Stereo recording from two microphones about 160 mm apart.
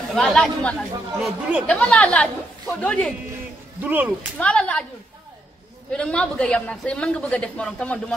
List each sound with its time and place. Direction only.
0.1 s a man's voice: 5° left (ahead or behind)
3.8 s speech: 10° right (ahead or behind)
4.4 s a man's voice: 5° left (ahead or behind)
5.9 s a man's voice: 5° left (ahead or behind)